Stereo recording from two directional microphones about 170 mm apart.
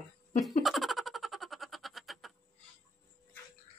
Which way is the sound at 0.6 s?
Centre (ahead or behind).